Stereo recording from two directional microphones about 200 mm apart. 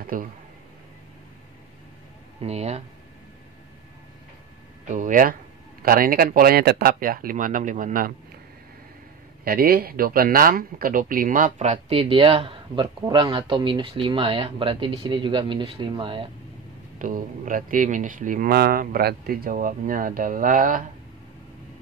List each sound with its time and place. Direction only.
0.0 s speech: 45° right (ahead or behind)
2.4 s speech: 35° right (ahead or behind)
4.8 s speech: 40° right (ahead or behind)
9.4 s speech: 50° right (ahead or behind); by 16.3 s 25° right (ahead or behind)
17.0 s speech: 45° right (ahead or behind)